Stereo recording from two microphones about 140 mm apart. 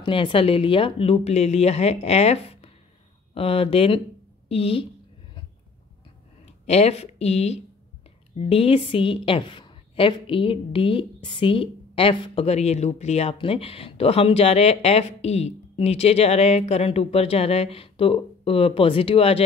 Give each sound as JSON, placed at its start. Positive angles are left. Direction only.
{"t": 0.0, "sound": "a woman's voice", "side_deg": 40}
{"t": 6.4, "sound": "a woman's voice", "side_deg": 50}